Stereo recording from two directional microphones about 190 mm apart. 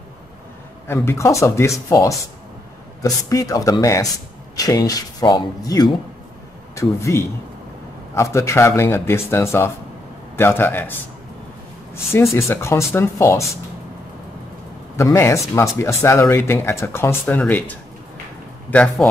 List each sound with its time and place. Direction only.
0.8 s speech: 10° left (ahead or behind)
15.0 s speech: 15° left (ahead or behind)